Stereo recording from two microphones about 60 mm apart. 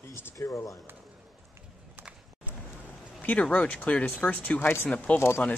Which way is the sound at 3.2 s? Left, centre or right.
Left.